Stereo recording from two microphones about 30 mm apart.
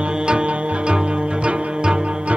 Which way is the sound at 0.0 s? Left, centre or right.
Right.